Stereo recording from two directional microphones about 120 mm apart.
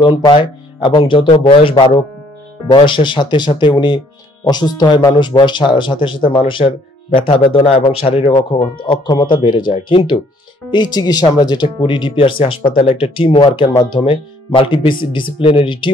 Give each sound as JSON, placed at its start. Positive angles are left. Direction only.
{"t": 0.0, "sound": "speech", "side_deg": 40}
{"t": 8.8, "sound": "speech", "side_deg": 40}